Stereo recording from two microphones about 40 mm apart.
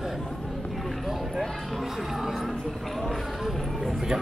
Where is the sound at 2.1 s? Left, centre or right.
Centre.